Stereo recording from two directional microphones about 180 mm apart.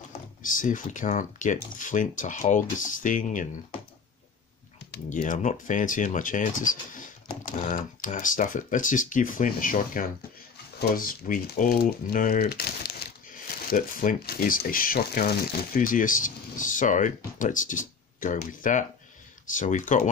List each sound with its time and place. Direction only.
0.4 s speech: 45° left (ahead or behind)
4.9 s speech: 45° left (ahead or behind)
13.7 s speech: 50° left (ahead or behind)